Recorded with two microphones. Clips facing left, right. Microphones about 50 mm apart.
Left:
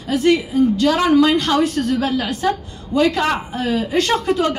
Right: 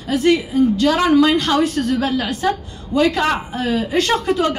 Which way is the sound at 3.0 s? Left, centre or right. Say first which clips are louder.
Even; right.